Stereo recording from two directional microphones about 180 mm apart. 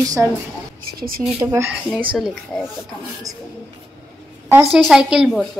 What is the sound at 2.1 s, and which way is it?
A woman's voice, 5° right (ahead or behind).